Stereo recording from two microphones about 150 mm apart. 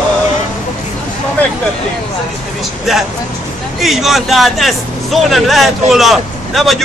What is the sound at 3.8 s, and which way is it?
A man's voice, centre (ahead or behind).